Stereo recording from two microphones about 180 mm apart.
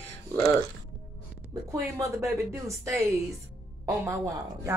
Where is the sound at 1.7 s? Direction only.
15° right (ahead or behind).